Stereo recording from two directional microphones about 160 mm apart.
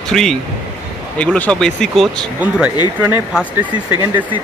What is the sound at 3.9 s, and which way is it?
Speech, 25° right (ahead or behind).